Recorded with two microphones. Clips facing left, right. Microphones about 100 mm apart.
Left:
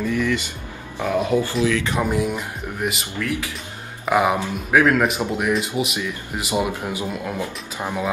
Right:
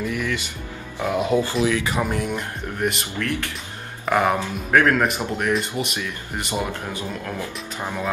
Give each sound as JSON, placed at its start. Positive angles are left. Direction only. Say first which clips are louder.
{"t": 0.0, "sound": "speech", "louder": "left 4 dB", "side_deg": -10}
{"t": 1.9, "sound": "speech", "louder": "left 2 dB", "side_deg": 0}
{"t": 6.5, "sound": "speech", "louder": "left 4 dB", "side_deg": 15}